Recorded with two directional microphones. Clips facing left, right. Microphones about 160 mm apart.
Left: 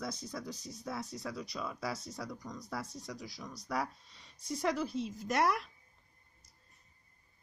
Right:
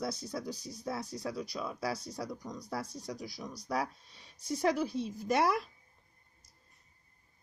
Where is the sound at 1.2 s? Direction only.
5° right (ahead or behind).